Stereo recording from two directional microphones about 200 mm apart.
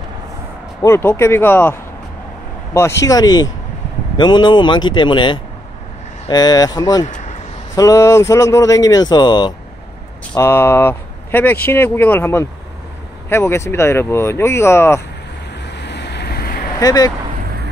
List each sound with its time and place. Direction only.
0.8 s speech: 15° left (ahead or behind)
3.1 s speech: 20° left (ahead or behind)
7.1 s a sound: 40° left (ahead or behind)
7.7 s speech: 15° left (ahead or behind)
15.5 s vehicle: 60° left (ahead or behind)
16.8 s speech: 20° left (ahead or behind)